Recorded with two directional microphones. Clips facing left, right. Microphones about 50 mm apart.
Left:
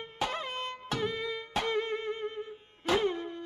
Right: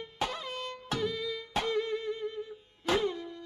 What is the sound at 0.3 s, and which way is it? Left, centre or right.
Music, left.